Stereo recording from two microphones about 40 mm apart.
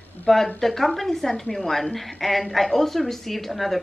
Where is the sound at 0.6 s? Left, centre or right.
Centre.